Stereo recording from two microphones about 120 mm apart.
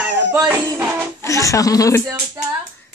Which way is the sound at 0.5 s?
25° right (ahead or behind).